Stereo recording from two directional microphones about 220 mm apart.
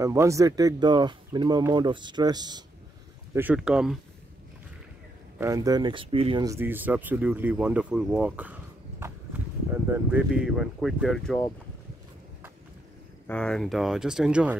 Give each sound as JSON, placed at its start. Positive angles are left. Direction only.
{"t": 0.0, "sound": "speech", "side_deg": -15}
{"t": 3.3, "sound": "speech", "side_deg": -5}
{"t": 5.4, "sound": "speech", "side_deg": -15}
{"t": 9.0, "sound": "walk", "side_deg": -10}
{"t": 9.9, "sound": "speech", "side_deg": -5}
{"t": 13.3, "sound": "speech", "side_deg": 5}